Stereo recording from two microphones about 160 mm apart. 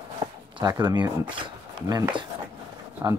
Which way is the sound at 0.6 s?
25° right (ahead or behind).